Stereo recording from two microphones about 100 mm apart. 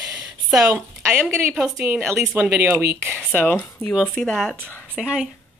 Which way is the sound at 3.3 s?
20° left (ahead or behind).